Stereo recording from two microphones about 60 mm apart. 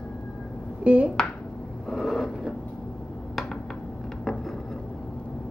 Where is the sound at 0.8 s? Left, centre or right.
Right.